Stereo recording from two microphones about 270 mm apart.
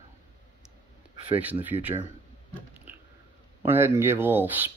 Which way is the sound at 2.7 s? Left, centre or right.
Centre.